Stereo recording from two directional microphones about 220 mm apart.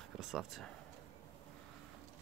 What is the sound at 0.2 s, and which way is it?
Speech, centre (ahead or behind).